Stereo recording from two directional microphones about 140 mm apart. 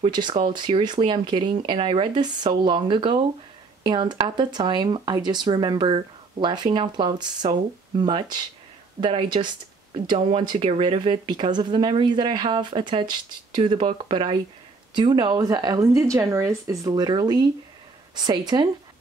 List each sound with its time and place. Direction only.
0.0 s speech: 35° right (ahead or behind)